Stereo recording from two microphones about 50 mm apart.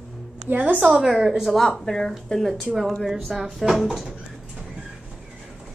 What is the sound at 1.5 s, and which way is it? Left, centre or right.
Speech, centre.